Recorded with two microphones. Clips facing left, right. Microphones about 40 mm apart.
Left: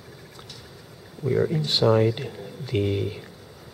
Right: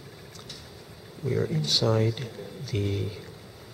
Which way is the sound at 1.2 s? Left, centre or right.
Centre.